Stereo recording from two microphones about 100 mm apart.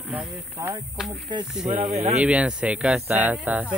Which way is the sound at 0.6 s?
30° right (ahead or behind).